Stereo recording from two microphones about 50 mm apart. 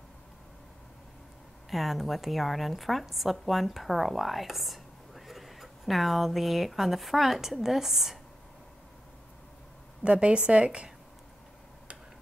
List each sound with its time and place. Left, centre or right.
1.7 s a woman's voice: centre
10.0 s a woman's voice: right